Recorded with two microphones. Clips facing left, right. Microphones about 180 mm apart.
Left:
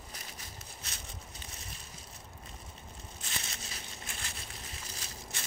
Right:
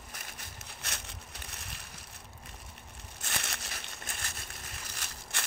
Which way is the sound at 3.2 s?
70° right (ahead or behind).